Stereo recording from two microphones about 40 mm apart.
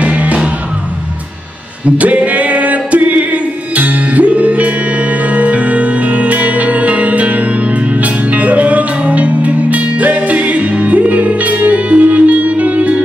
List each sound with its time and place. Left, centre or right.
0.0 s music: right
1.9 s music: right